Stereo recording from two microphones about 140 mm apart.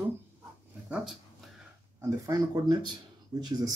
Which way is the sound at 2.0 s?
25° right (ahead or behind).